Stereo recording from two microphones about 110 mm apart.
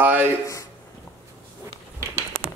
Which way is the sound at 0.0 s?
15° right (ahead or behind).